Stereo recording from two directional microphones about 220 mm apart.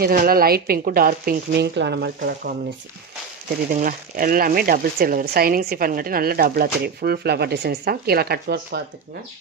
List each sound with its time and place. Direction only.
0.0 s speech: 45° right (ahead or behind)
3.7 s speech: 40° right (ahead or behind)